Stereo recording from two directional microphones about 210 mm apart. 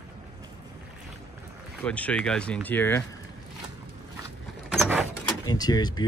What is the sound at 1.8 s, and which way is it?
Speech, 5° left (ahead or behind).